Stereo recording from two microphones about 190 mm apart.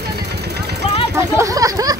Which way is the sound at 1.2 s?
15° right (ahead or behind).